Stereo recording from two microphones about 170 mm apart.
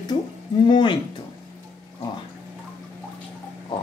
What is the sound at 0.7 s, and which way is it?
Speech, 25° left (ahead or behind).